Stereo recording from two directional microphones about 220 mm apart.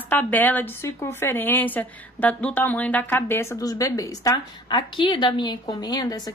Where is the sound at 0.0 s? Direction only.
10° left (ahead or behind).